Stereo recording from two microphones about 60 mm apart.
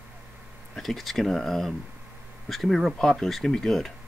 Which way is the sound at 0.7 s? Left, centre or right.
Centre.